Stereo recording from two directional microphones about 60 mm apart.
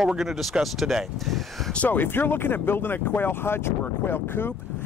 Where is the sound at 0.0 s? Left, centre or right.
Centre.